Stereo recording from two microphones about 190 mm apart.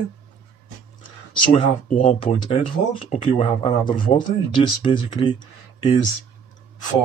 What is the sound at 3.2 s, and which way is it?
Speech, 25° left (ahead or behind).